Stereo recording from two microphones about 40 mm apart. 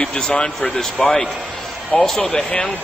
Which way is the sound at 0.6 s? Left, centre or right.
Centre.